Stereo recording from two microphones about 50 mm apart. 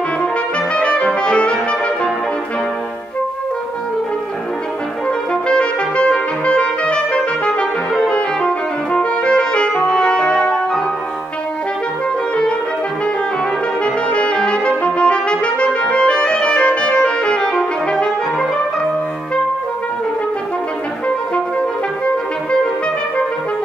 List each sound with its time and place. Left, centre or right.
0.7 s brass instrument: left
5.3 s clarinet: centre
7.9 s music: centre
13.8 s brass instrument: left
21.5 s music: left